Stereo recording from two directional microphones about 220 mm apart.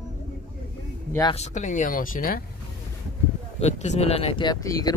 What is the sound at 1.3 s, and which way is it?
Speech, 30° left (ahead or behind).